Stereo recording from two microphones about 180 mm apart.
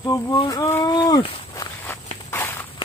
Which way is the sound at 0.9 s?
25° left (ahead or behind).